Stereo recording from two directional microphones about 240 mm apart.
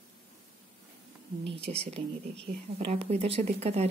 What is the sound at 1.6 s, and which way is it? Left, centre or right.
Speech, right.